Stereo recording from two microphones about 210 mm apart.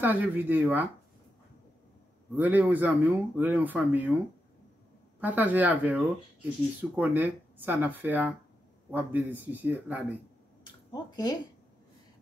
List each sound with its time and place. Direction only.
0.0 s speech: 10° right (ahead or behind)
2.3 s speech: 10° right (ahead or behind)
5.2 s speech: 10° right (ahead or behind)
10.9 s speech: 20° left (ahead or behind)